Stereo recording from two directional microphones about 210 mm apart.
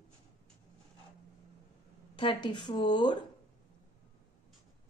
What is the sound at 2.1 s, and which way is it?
A woman's voice, 25° left (ahead or behind).